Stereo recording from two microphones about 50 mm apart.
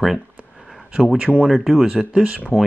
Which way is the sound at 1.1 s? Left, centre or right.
Right.